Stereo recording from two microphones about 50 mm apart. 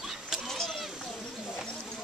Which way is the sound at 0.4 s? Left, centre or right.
Centre.